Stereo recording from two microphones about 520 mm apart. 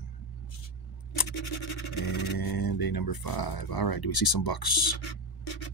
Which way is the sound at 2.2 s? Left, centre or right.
Left.